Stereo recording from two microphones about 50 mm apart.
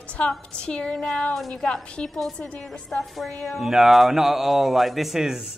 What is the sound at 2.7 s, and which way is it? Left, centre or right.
Speech, centre.